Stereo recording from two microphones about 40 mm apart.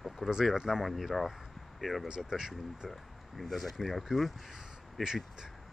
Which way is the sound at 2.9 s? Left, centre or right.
Centre.